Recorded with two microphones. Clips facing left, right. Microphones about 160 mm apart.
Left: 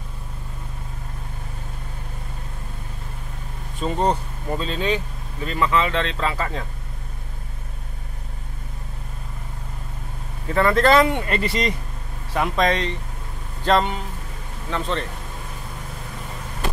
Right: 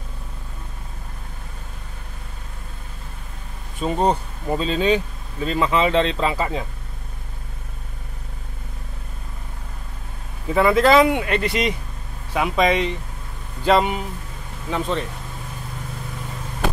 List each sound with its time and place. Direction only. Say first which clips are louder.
3.8 s speech: right 2 dB; 15° right (ahead or behind)
10.5 s speech: right 2 dB; 10° right (ahead or behind)